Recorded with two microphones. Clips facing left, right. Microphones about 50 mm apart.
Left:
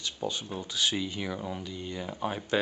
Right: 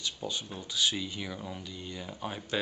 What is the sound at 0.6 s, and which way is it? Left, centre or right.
Speech, left.